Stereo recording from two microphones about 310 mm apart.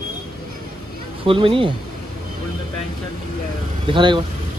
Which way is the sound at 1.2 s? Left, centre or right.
Centre.